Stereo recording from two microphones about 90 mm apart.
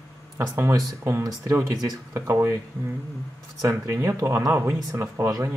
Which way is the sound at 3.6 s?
35° right (ahead or behind).